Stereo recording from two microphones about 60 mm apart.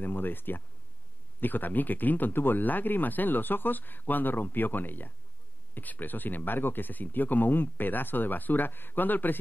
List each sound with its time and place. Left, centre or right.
0.0 s speech: left